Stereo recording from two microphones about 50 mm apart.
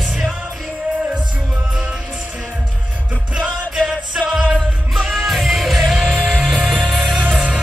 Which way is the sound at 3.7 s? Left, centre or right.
Centre.